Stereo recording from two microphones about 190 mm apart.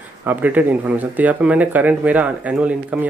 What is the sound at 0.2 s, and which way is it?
Speech, 10° right (ahead or behind).